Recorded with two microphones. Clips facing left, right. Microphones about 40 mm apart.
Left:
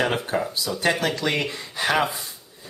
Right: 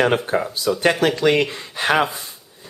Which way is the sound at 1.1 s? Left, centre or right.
Right.